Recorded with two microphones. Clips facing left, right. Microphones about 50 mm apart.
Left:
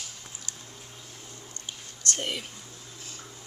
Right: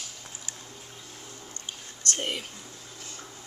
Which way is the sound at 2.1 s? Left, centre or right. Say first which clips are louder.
Right 1 dB; centre.